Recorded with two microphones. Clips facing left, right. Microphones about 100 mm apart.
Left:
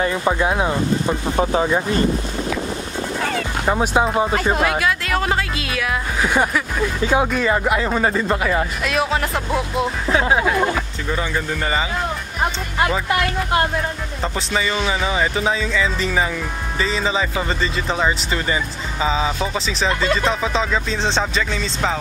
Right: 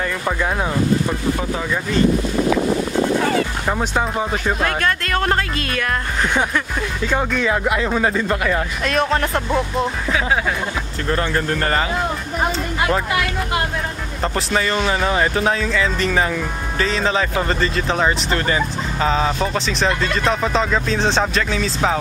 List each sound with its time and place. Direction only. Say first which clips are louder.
0.0 s speech: left 3 dB; 10° left (ahead or behind)
1.0 s speech: left 2 dB; 25° left (ahead or behind)
3.6 s speech: left 3 dB; 10° left (ahead or behind)
10.2 s speech: left 2 dB; 15° left (ahead or behind)
11.1 s speech: right 5 dB; 5° left (ahead or behind)
14.2 s speech: right 2 dB; 5° left (ahead or behind)